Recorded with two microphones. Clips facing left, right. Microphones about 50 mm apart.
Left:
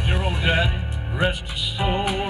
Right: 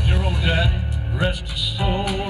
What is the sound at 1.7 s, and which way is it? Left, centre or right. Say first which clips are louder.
Music: left 1 dB; left.